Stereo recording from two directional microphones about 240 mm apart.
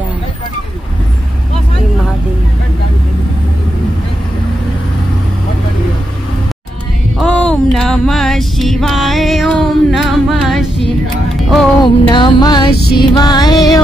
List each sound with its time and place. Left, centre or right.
7.2 s music: centre
11.8 s music: centre